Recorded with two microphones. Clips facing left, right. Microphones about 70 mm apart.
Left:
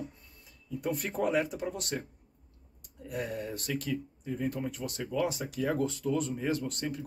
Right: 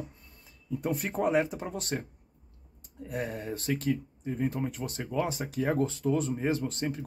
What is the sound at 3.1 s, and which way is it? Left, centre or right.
Speech, right.